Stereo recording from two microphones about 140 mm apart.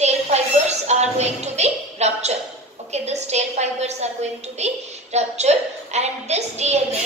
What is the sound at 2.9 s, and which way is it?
A woman's voice, 50° right (ahead or behind).